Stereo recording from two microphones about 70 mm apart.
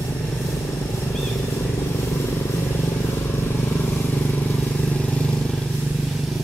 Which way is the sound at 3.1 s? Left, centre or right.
Left.